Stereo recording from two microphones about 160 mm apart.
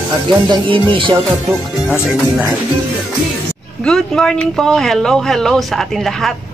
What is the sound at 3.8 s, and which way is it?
Speech, 5° left (ahead or behind).